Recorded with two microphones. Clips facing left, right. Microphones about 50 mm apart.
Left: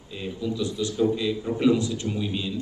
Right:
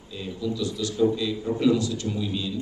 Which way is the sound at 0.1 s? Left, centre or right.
Left.